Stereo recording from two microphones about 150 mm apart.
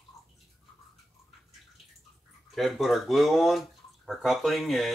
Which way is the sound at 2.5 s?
Centre (ahead or behind).